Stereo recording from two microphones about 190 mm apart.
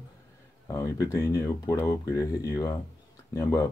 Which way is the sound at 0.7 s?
15° left (ahead or behind).